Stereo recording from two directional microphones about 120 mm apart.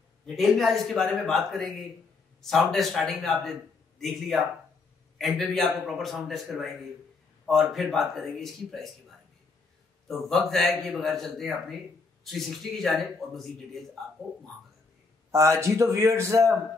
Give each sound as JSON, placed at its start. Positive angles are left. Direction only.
{"t": 0.3, "sound": "a man's voice", "side_deg": 0}
{"t": 10.0, "sound": "a man's voice", "side_deg": 0}
{"t": 15.3, "sound": "speech", "side_deg": -25}